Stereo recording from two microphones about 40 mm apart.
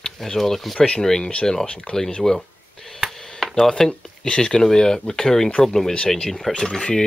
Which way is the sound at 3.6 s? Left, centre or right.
Centre.